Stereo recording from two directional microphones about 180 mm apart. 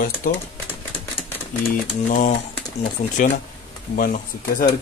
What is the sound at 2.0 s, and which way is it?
Speech, 45° left (ahead or behind).